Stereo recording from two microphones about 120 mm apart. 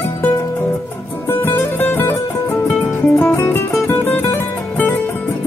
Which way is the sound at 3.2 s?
20° left (ahead or behind).